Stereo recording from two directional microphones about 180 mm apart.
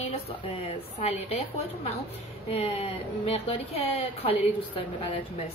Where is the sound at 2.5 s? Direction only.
30° left (ahead or behind).